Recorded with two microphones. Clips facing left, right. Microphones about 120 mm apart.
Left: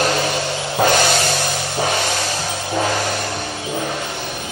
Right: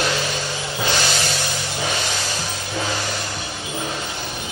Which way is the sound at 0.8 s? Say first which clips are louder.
Left 8 dB; 55° left (ahead or behind).